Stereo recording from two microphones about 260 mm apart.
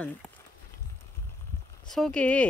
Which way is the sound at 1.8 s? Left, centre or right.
Centre.